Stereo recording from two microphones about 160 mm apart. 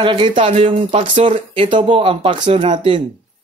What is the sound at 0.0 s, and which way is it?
A man's voice, 30° right (ahead or behind).